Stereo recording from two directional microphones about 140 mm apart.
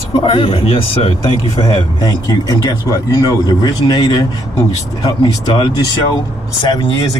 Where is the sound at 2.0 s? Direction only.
25° left (ahead or behind).